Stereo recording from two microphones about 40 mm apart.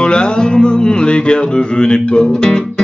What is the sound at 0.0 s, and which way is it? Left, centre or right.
Music, left.